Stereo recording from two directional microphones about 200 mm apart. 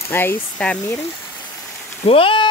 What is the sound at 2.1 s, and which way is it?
Speech, 25° left (ahead or behind).